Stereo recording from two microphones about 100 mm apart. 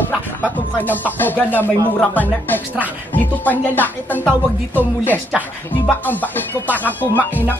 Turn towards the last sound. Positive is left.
turn(degrees=20)  # may be behind; listen again after turning